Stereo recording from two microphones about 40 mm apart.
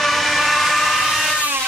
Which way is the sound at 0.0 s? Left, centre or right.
Centre.